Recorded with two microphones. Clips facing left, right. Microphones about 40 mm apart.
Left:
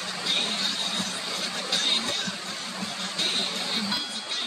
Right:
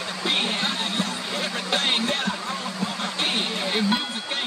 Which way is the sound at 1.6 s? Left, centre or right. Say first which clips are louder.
Right 4 dB; right.